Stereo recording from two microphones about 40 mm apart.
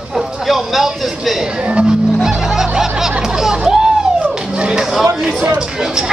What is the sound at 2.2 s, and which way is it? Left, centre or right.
Music, centre.